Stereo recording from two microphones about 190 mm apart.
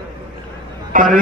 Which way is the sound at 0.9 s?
45° right (ahead or behind).